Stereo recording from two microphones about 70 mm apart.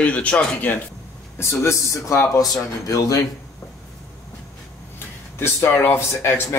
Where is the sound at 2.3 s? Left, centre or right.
Left.